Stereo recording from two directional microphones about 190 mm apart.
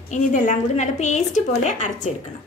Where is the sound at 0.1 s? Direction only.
40° left (ahead or behind).